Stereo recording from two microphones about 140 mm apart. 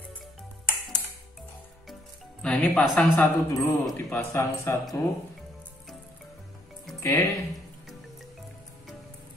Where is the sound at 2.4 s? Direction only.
5° left (ahead or behind).